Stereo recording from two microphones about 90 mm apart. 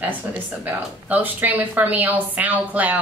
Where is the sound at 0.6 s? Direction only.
15° right (ahead or behind).